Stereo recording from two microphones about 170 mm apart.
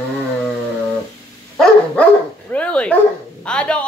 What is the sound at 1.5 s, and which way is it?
Speech, 5° left (ahead or behind).